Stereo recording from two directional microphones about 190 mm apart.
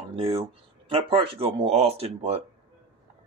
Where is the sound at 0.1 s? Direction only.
30° right (ahead or behind).